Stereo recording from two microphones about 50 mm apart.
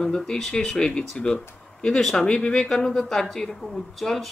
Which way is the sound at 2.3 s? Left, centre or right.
Left.